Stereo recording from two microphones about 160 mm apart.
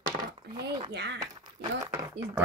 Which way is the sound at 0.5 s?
90° right.